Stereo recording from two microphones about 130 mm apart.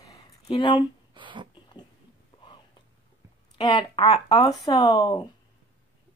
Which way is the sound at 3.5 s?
35° left (ahead or behind).